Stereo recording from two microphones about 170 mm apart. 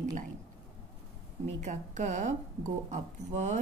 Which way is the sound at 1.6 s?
45° right (ahead or behind).